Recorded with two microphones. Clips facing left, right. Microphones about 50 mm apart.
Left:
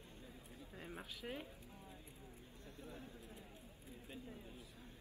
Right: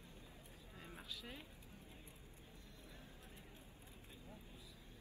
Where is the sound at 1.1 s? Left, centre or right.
Left.